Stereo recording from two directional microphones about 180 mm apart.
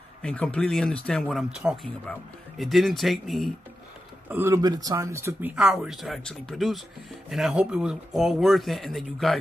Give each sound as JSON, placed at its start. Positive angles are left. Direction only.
{"t": 0.2, "sound": "speech", "side_deg": 5}
{"t": 4.3, "sound": "speech", "side_deg": -15}
{"t": 5.6, "sound": "speech", "side_deg": 0}